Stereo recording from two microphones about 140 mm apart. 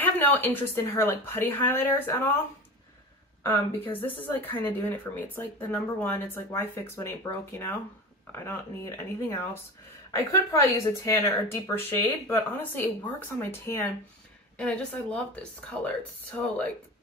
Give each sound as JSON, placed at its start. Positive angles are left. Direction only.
{"t": 0.0, "sound": "speech", "side_deg": 15}
{"t": 4.0, "sound": "speech", "side_deg": 15}